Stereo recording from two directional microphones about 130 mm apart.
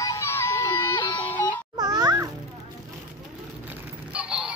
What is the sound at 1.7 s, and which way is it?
Babbling, 30° right (ahead or behind).